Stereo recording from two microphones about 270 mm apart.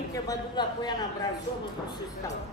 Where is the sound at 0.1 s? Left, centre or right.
Centre.